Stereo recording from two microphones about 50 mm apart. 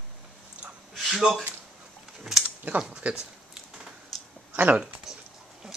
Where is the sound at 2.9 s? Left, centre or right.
Right.